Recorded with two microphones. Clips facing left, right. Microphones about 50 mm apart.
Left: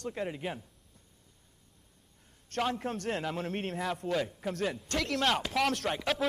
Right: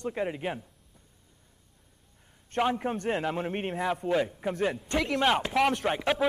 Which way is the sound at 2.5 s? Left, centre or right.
Centre.